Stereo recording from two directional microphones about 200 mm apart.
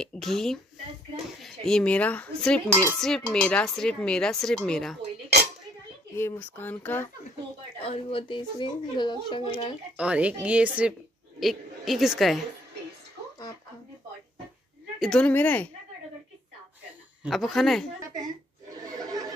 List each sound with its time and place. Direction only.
0.0 s a woman's voice: centre (ahead or behind)
6.1 s speech: 10° left (ahead or behind)
7.8 s speech: 30° left (ahead or behind)
9.5 s a woman's voice: 5° right (ahead or behind)
15.0 s speech: 5° left (ahead or behind)
17.2 s a woman's voice: centre (ahead or behind)
18.8 s a sound: 20° right (ahead or behind)